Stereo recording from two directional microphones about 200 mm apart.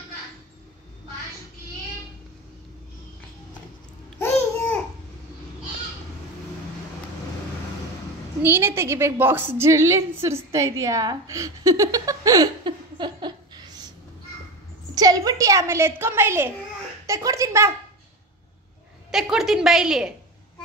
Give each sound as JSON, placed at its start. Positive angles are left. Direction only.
{"t": 4.2, "sound": "babbling", "side_deg": 10}
{"t": 8.4, "sound": "a woman's voice", "side_deg": -10}
{"t": 15.0, "sound": "a sound", "side_deg": -20}
{"t": 17.0, "sound": "speech", "side_deg": -15}
{"t": 19.3, "sound": "a woman's voice", "side_deg": 0}